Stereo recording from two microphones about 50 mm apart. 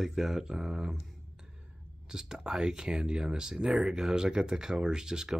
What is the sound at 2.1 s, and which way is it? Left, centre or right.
Speech, centre.